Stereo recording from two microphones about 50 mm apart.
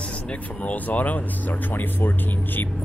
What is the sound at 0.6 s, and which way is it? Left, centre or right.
Speech, left.